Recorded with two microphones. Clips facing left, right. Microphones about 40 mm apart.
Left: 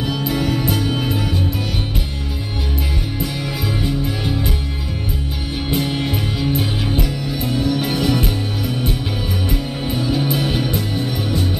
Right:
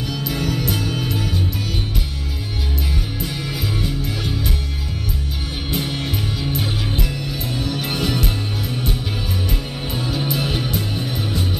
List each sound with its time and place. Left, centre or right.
0.0 s music: left
0.7 s music: centre
0.9 s music: left
5.7 s music: centre
10.3 s music: centre